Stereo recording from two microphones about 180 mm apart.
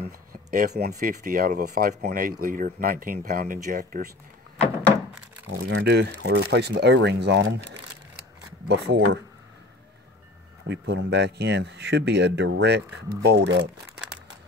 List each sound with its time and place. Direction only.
0.3 s speech: 50° right (ahead or behind)
5.6 s speech: 80° right
10.7 s speech: 75° right (ahead or behind)